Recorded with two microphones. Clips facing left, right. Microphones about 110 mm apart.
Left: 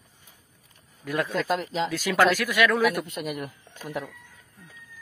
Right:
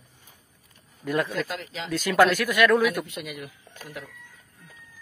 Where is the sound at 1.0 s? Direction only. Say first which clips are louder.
Left 1 dB; centre (ahead or behind).